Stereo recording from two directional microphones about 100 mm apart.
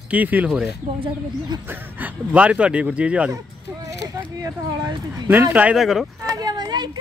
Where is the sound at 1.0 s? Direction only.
50° right (ahead or behind).